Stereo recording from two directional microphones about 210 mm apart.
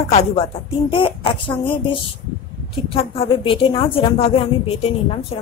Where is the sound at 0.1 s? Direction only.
30° left (ahead or behind).